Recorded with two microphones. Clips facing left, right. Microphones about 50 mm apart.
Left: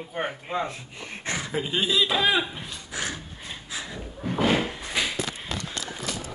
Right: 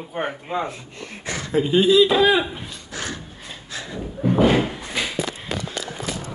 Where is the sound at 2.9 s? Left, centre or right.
Centre.